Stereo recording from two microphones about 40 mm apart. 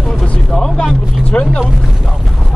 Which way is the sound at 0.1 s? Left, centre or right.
Centre.